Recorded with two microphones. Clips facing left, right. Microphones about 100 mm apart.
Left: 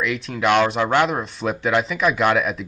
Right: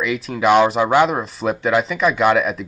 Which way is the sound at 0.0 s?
Centre (ahead or behind).